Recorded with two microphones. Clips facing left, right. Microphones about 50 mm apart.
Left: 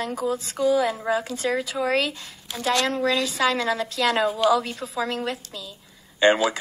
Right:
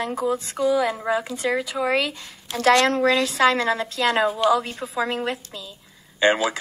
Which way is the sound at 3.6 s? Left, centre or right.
Centre.